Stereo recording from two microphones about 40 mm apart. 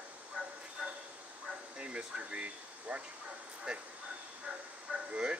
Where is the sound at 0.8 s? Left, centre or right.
Right.